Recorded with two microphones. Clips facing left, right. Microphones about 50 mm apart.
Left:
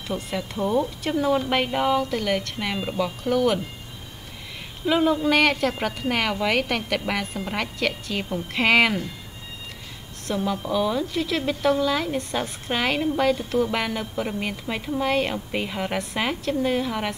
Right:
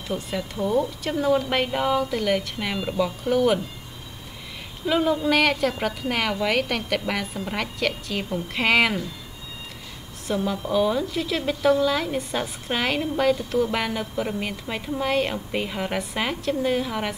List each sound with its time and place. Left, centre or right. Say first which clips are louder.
0.1 s a woman's voice: even; centre
0.6 s a woman's voice: even; left
1.2 s a woman's voice: right 1 dB; centre
4.8 s a woman's voice: left 1 dB; centre
10.2 s a woman's voice: even; centre